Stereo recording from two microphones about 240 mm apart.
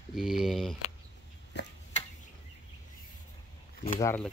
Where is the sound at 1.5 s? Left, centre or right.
Left.